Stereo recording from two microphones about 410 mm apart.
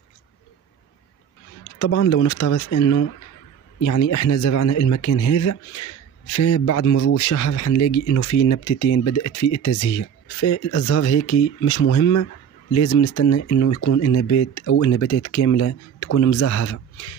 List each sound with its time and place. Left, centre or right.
1.8 s speech: left